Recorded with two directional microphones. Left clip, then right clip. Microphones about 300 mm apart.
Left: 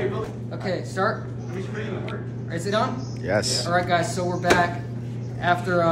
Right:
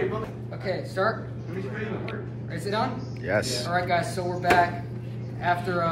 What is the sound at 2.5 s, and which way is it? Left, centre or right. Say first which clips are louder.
Speech: left 4 dB; centre.